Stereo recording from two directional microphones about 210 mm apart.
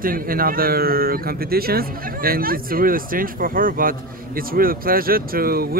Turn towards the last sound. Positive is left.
turn(degrees=-45)  # may be behind; listen again after turning